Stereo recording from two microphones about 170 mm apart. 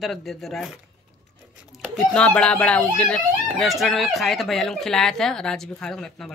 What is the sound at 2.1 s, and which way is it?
Speech, 5° left (ahead or behind).